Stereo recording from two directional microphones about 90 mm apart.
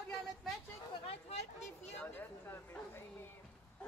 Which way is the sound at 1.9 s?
20° left (ahead or behind).